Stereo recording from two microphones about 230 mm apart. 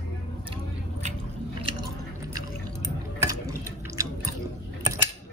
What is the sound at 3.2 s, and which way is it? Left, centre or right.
Water, centre.